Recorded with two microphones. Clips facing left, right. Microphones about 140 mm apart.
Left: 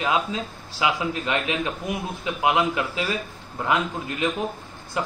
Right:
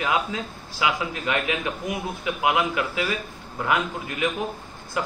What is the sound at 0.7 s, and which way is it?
A man's voice, 30° left (ahead or behind).